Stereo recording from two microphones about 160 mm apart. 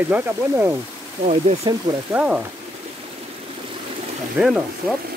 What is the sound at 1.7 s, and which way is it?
Speech, 30° right (ahead or behind).